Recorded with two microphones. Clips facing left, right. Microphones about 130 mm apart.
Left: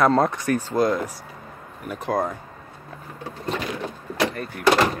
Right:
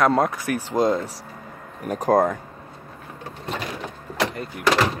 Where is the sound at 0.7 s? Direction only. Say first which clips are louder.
Right 2 dB; 25° right (ahead or behind).